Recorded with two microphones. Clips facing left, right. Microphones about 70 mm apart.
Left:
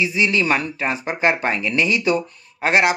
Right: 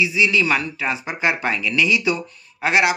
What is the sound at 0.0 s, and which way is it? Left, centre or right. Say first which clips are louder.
Speech: right 1 dB; left.